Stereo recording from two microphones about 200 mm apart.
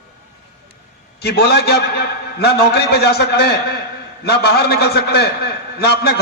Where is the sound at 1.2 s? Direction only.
55° left (ahead or behind).